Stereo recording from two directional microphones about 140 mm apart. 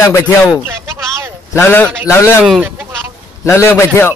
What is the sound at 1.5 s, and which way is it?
Speech, 15° left (ahead or behind).